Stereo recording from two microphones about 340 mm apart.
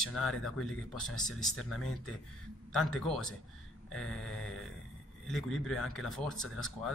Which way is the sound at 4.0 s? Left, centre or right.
Left.